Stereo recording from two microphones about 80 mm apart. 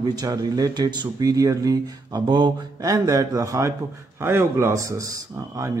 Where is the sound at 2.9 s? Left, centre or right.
Right.